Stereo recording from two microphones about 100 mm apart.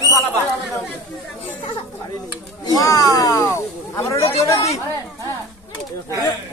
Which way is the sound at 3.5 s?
30° left (ahead or behind).